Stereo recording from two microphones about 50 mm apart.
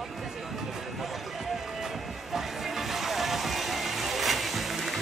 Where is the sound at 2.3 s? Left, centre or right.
Centre.